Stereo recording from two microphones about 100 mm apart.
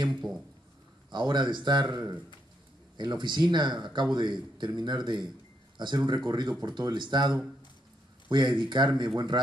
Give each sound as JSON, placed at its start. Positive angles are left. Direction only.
{"t": 0.1, "sound": "speech", "side_deg": 0}
{"t": 1.1, "sound": "a man's voice", "side_deg": -50}